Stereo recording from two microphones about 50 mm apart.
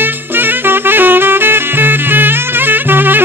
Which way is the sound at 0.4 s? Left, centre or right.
Right.